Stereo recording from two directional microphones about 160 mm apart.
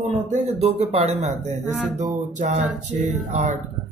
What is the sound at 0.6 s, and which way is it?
Speech, 40° right (ahead or behind).